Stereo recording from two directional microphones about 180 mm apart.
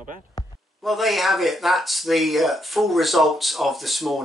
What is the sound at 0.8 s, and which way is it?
Speech, centre (ahead or behind).